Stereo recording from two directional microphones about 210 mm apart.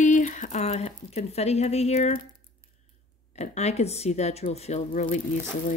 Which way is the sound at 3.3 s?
30° left (ahead or behind).